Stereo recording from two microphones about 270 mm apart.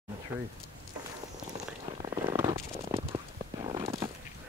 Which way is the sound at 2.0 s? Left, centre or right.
Centre.